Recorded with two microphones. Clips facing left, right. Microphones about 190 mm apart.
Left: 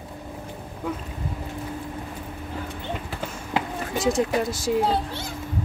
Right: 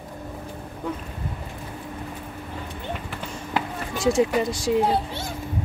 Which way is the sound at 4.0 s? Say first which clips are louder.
Right 2 dB; centre (ahead or behind).